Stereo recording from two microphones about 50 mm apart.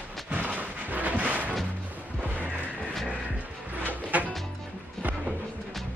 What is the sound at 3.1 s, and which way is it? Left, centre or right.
Music, right.